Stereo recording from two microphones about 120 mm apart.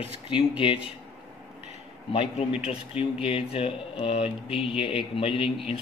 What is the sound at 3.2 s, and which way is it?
Speech, 55° left (ahead or behind).